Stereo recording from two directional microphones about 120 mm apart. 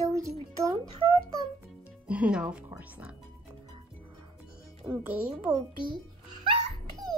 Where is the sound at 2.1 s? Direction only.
10° right (ahead or behind).